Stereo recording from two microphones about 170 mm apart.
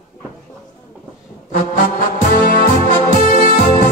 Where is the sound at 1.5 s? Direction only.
55° left (ahead or behind).